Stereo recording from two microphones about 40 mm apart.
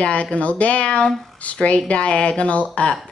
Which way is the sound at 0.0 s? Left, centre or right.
Left.